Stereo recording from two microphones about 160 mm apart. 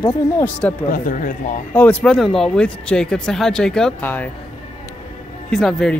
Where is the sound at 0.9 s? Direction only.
55° left (ahead or behind).